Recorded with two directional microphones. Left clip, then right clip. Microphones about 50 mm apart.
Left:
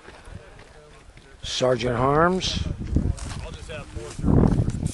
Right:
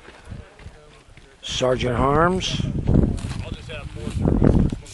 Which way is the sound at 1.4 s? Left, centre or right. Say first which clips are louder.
Right 1 dB; right.